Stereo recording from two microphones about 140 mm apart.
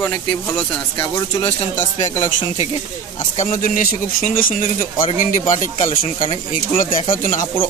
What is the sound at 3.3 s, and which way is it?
Speech, 75° left (ahead or behind).